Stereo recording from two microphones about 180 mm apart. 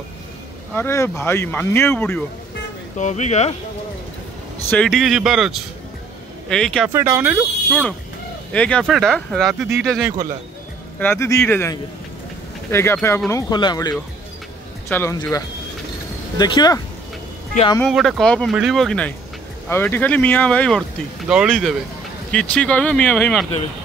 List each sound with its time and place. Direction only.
0.7 s speech: 15° left (ahead or behind)
3.0 s speech: 40° left (ahead or behind)
4.6 s speech: 5° left (ahead or behind)
6.9 s speech: 10° right (ahead or behind)
8.5 s speech: 5° left (ahead or behind)
11.0 s speech: 15° left (ahead or behind)
12.7 s speech: 15° left (ahead or behind)
14.9 s speech: 10° left (ahead or behind)
16.3 s speech: 25° left (ahead or behind)
17.8 s speech: centre (ahead or behind)